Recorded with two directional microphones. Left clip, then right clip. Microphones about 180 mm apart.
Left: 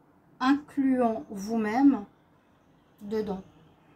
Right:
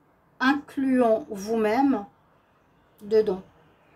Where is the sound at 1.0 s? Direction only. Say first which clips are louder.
Right 6 dB; 55° right (ahead or behind).